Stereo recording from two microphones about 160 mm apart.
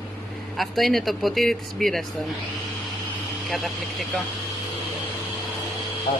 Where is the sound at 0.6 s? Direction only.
Centre (ahead or behind).